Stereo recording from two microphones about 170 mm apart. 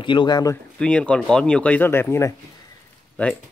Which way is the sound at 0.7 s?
5° left (ahead or behind).